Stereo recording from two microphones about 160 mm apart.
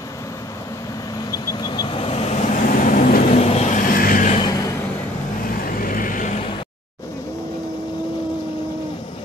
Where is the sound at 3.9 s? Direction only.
60° left (ahead or behind).